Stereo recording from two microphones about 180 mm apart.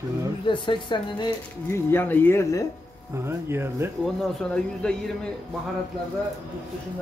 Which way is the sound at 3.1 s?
15° right (ahead or behind).